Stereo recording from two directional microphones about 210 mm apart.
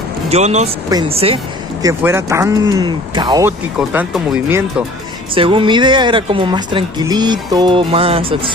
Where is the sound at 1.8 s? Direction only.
15° right (ahead or behind).